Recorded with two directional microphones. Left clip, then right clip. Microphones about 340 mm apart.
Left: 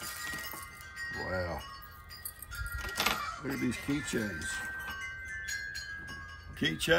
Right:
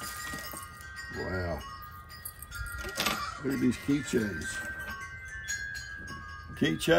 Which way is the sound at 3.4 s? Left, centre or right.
Centre.